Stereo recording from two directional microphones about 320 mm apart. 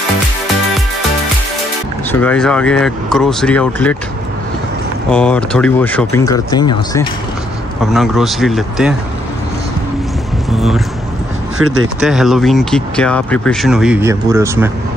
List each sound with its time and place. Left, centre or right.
2.1 s speech: centre
5.1 s speech: centre
7.8 s speech: centre
10.5 s a sound: centre
12.0 s speech: centre